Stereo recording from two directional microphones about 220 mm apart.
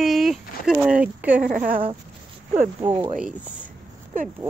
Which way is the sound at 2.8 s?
10° right (ahead or behind).